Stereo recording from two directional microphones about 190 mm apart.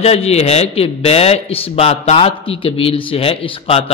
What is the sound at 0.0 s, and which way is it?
A man's voice, 30° left (ahead or behind).